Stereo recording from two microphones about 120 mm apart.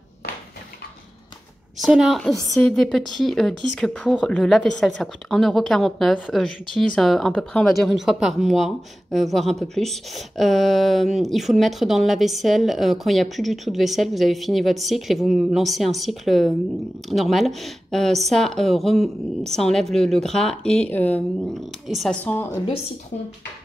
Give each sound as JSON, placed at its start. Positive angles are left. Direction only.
{"t": 1.8, "sound": "a woman's voice", "side_deg": 0}
{"t": 21.8, "sound": "a woman's voice", "side_deg": 0}
{"t": 22.1, "sound": "a woman's voice", "side_deg": 15}